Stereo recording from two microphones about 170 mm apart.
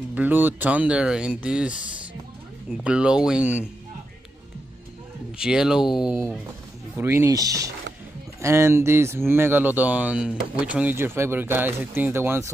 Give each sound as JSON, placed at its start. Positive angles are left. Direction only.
{"t": 0.1, "sound": "speech", "side_deg": -10}
{"t": 2.8, "sound": "speech", "side_deg": -5}
{"t": 5.4, "sound": "speech", "side_deg": -5}
{"t": 7.0, "sound": "speech", "side_deg": -15}